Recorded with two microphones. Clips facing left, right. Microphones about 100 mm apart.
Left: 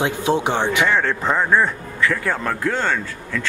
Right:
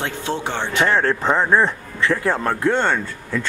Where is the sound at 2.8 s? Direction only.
20° right (ahead or behind).